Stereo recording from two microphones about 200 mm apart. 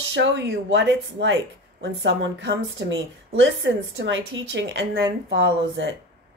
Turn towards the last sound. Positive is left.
turn(degrees=-65)  # may be behind; listen again after turning